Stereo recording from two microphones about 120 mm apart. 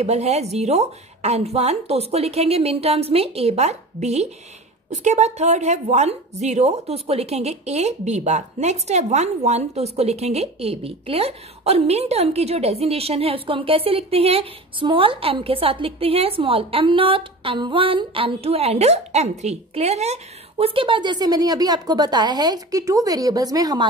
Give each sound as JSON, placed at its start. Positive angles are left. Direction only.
{"t": 0.0, "sound": "a woman's voice", "side_deg": -65}